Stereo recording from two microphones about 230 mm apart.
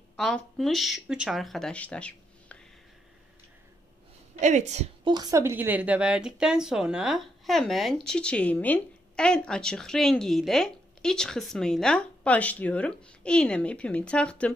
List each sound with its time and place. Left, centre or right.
0.1 s speech: centre
4.4 s a woman's voice: right
5.1 s speech: centre